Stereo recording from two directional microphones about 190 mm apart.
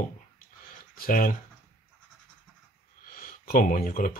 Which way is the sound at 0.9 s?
45° left (ahead or behind).